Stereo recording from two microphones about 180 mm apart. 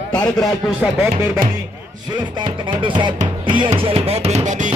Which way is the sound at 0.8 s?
5° right (ahead or behind).